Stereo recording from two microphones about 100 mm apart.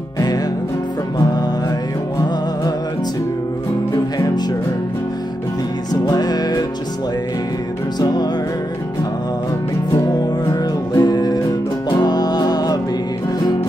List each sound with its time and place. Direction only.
6.0 s music: 40° left (ahead or behind)
8.0 s music: 40° left (ahead or behind)
10.5 s music: 40° left (ahead or behind)